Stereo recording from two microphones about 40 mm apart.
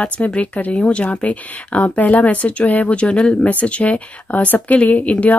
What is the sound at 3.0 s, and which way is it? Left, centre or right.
Speech, left.